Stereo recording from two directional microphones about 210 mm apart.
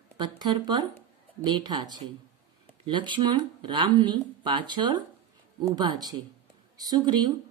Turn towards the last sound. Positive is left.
turn(degrees=-20)  # may be behind; listen again after turning